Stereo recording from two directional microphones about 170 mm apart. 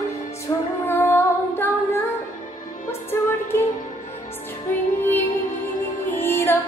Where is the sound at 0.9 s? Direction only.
15° left (ahead or behind).